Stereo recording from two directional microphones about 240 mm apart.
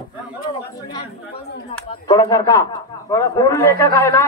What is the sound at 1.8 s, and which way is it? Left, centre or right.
Speech, centre.